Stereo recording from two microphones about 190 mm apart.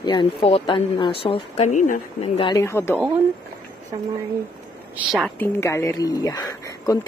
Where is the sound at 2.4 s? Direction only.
25° left (ahead or behind).